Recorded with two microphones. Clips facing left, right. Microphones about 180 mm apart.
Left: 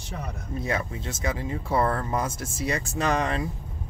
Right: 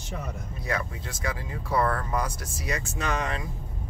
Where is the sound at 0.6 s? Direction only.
25° left (ahead or behind).